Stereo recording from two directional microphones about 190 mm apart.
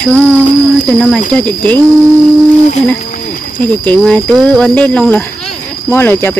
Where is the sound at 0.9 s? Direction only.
5° left (ahead or behind).